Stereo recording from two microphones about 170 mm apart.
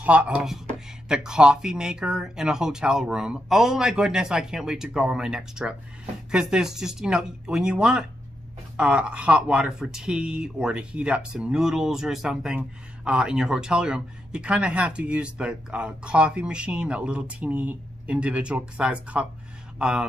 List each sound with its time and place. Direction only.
0.0 s speech: 10° right (ahead or behind)